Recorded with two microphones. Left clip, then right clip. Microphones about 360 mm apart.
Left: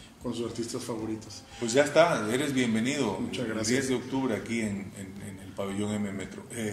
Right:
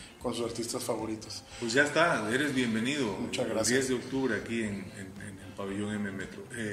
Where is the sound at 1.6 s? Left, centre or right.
Centre.